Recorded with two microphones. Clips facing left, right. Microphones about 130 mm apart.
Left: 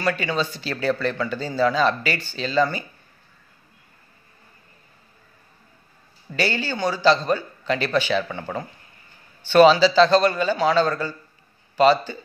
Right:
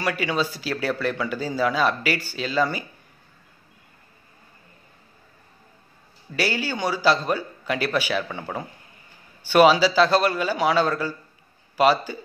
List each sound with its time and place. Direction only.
0.0 s a man's voice: 10° right (ahead or behind)
6.3 s a man's voice: 10° right (ahead or behind)